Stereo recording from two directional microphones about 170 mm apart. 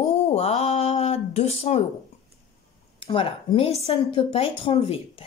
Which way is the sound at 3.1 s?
35° left (ahead or behind).